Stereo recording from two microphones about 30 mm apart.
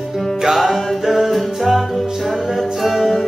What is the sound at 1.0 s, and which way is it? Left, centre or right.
Music, centre.